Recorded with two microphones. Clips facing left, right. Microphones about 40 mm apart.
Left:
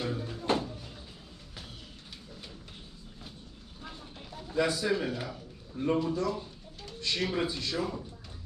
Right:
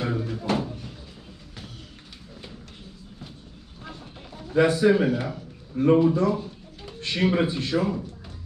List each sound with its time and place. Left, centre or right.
0.0 s a sound: right
4.6 s a man's voice: right
5.7 s a man's voice: right
6.1 s a man's voice: right